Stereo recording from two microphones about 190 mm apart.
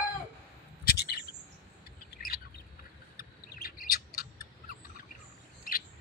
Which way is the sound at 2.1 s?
50° left (ahead or behind).